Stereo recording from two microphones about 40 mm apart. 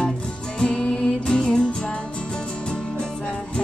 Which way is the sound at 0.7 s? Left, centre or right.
Left.